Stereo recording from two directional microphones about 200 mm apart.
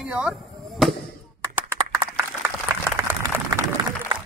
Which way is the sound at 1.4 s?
15° right (ahead or behind).